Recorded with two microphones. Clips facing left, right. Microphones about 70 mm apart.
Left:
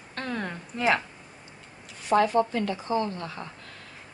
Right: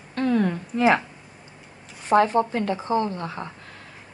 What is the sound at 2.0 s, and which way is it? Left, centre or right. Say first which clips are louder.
A woman's voice: right 3 dB; right.